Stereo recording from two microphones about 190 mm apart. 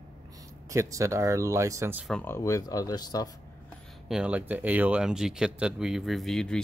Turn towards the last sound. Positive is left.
turn(degrees=5)  # may be behind; listen again after turning